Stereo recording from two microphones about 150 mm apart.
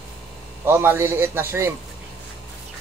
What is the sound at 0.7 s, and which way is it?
A man's voice, 15° right (ahead or behind).